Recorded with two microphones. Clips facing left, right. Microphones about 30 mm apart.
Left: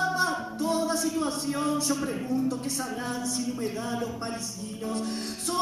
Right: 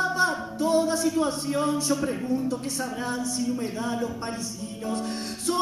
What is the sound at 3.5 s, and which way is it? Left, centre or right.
Music, right.